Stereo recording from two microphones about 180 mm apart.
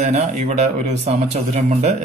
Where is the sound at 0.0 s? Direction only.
40° right (ahead or behind).